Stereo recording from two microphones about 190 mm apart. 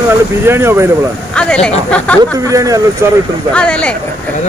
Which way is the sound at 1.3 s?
5° left (ahead or behind).